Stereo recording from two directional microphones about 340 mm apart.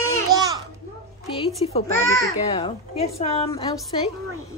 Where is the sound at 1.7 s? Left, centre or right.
Centre.